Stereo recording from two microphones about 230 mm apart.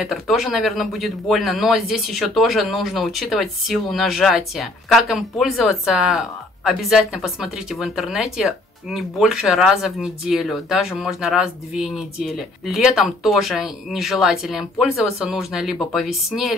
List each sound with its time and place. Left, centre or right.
0.0 s speech: centre